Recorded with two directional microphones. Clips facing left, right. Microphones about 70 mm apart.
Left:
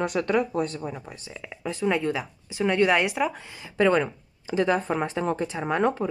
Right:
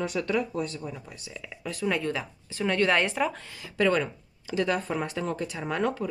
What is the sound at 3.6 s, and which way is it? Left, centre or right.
Speech, left.